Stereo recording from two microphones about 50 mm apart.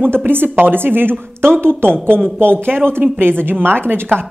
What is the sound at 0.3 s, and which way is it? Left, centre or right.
Speech, right.